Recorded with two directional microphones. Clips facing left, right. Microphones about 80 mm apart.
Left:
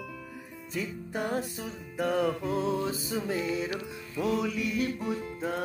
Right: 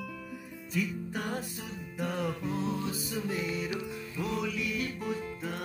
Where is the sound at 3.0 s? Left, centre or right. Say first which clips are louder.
Left 3 dB; left.